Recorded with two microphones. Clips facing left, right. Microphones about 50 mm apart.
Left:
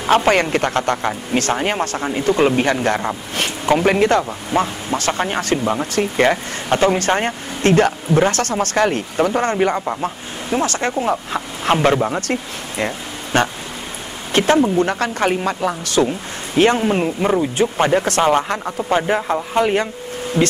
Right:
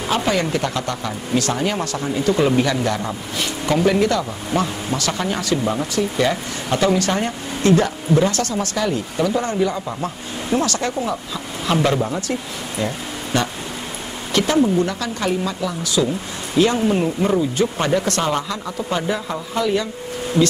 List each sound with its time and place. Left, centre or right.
0.1 s a man's voice: left
10.0 s speech: left
11.7 s a man's voice: left
12.1 s a man's voice: left